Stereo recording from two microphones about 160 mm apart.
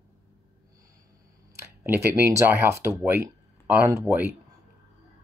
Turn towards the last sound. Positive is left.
turn(degrees=-15)  # may be behind; listen again after turning